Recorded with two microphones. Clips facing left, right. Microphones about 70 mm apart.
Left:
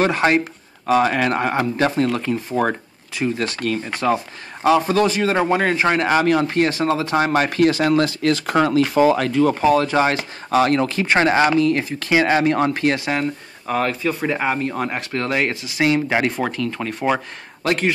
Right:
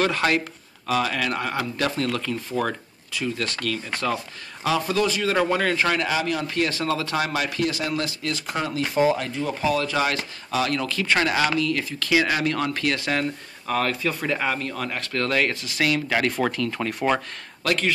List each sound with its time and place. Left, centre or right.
0.0 s speech: left
4.6 s speech: left
5.9 s speech: left
6.7 s speech: left
9.5 s speech: left; by 15.5 s centre
15.5 s speech: centre
15.8 s speech: left
16.3 s speech: centre
17.6 s speech: left